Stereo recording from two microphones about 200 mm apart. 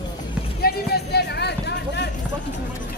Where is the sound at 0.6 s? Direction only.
55° left (ahead or behind).